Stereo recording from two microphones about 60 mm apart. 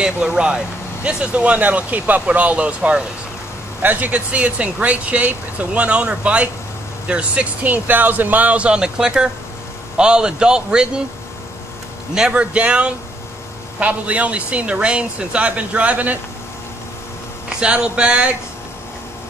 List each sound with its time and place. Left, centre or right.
0.0 s a man's voice: centre
7.7 s a man's voice: right; by 10.9 s centre
12.1 s a man's voice: centre
17.5 s a man's voice: centre